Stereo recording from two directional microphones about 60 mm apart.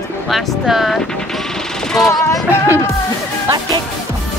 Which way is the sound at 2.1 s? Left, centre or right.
Left.